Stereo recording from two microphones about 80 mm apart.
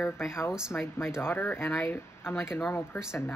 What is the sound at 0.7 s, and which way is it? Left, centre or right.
Speech, left.